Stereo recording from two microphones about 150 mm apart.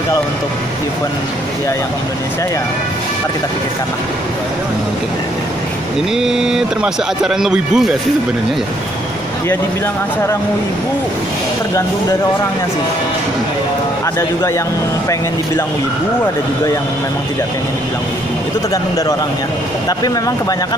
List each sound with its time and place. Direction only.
6.1 s speech: 5° right (ahead or behind)
20.0 s speech: 25° left (ahead or behind)